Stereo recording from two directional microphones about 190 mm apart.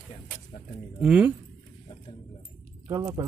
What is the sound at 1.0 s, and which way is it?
Speech, 5° right (ahead or behind).